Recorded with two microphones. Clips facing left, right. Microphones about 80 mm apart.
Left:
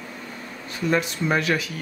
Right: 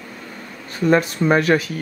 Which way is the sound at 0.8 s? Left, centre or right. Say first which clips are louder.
Right 7 dB; right.